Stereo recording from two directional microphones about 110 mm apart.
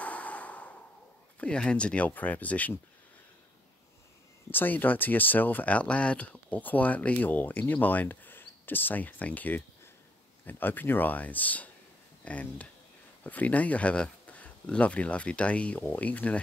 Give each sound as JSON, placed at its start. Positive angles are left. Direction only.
{"t": 0.0, "sound": "a sound", "side_deg": 15}
{"t": 1.4, "sound": "speech", "side_deg": 10}
{"t": 4.5, "sound": "speech", "side_deg": 15}